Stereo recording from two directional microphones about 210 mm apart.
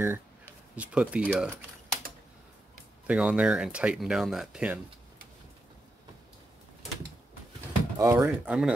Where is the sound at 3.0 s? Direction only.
5° right (ahead or behind).